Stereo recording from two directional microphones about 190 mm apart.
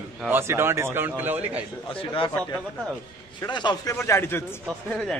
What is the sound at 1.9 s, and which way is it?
Speech, 25° left (ahead or behind).